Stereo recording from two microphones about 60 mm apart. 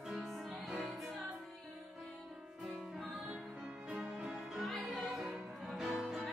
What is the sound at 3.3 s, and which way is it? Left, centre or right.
Music, right.